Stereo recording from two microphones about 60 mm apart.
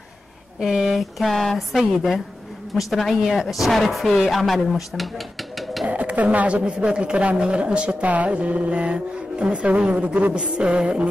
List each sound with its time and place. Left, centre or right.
0.6 s speech: centre
5.6 s a sound: centre
5.9 s speech: right